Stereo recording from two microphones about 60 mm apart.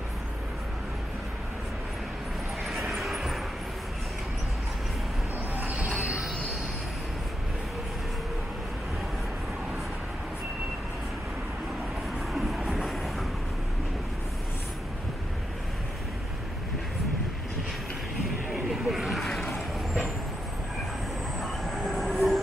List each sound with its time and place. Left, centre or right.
2.6 s vehicle: centre
5.6 s mechanisms: right
5.9 s train wheels squealing: centre
12.3 s train: centre
18.7 s vehicle: centre
21.4 s train: centre